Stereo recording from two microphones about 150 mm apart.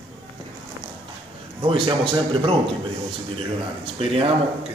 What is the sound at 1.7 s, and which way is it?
Speech, 35° right (ahead or behind).